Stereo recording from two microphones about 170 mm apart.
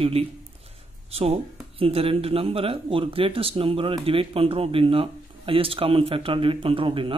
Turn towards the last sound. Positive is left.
turn(degrees=-30)  # may be behind; listen again after turning